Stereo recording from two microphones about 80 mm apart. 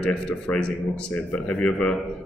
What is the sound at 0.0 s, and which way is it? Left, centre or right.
Speech, centre.